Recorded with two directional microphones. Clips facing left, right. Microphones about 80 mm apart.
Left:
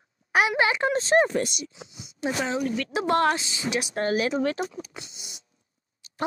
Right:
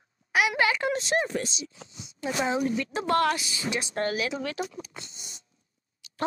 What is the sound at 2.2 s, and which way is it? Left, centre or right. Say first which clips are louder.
Speech: even; left.